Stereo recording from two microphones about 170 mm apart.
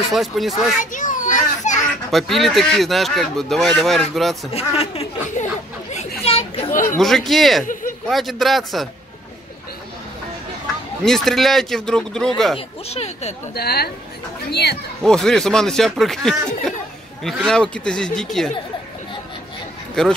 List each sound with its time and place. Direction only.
0.1 s speech: centre (ahead or behind)
0.7 s children playing: 50° left (ahead or behind)
2.0 s speech: centre (ahead or behind)
4.5 s speech: 35° left (ahead or behind)
6.2 s children playing: 35° left (ahead or behind)
6.7 s chatter: 50° left (ahead or behind)
7.0 s speech: centre (ahead or behind)
11.1 s speech: centre (ahead or behind)
12.5 s speech: 40° left (ahead or behind)
13.6 s a woman's voice: 65° left (ahead or behind)
14.5 s speech: 75° left (ahead or behind)
15.0 s speech: centre (ahead or behind)
20.0 s speech: 5° left (ahead or behind)